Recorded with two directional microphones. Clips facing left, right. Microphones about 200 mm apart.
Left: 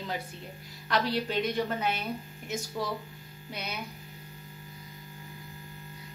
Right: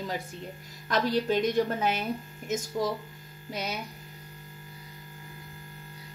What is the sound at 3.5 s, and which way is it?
Speech, 40° right (ahead or behind).